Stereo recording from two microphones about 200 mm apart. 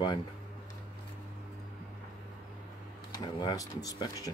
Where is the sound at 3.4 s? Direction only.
20° left (ahead or behind).